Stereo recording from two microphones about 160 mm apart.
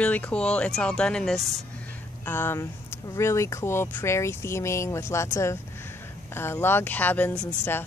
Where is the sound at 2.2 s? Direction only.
15° left (ahead or behind).